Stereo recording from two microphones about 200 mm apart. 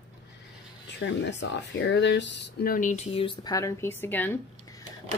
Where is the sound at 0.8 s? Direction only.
60° left (ahead or behind); by 4.4 s 10° left (ahead or behind).